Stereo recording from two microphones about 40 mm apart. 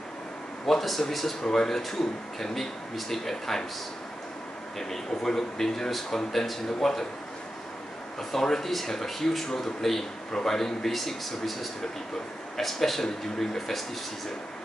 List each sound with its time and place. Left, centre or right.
0.7 s speech: centre
1.4 s speech: centre
1.7 s speech: centre
4.7 s speech: centre
8.2 s speech: centre